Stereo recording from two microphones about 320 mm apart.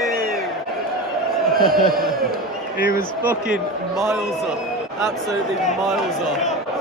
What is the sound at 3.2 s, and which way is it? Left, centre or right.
Speech, centre.